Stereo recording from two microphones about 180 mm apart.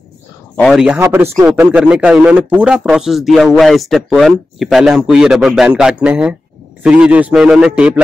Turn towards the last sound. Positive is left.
turn(degrees=-5)  # may be behind; listen again after turning